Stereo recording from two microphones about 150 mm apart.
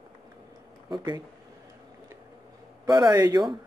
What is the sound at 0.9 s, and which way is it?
Speech, 30° right (ahead or behind).